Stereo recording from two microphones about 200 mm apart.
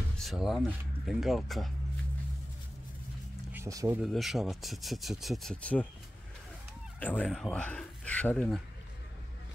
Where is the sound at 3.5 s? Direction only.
15° right (ahead or behind).